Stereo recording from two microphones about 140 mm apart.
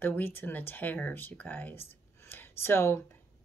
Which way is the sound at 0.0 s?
15° left (ahead or behind).